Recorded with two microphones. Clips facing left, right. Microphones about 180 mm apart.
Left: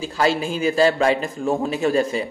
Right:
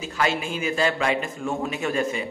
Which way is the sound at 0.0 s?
35° left (ahead or behind).